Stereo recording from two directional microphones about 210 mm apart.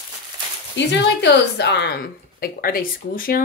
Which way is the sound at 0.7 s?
55° left (ahead or behind).